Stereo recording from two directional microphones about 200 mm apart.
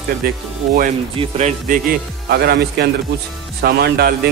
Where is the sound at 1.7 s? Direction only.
50° right (ahead or behind).